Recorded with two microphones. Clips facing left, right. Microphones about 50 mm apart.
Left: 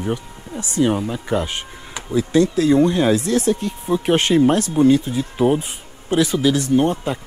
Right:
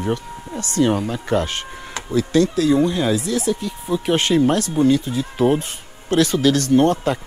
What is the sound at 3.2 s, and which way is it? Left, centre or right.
Speech, left.